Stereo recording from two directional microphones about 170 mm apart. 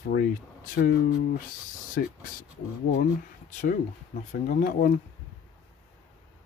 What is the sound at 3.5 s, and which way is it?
Speech, 50° left (ahead or behind).